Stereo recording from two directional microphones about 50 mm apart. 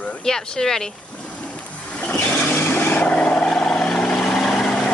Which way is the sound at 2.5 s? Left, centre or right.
Left.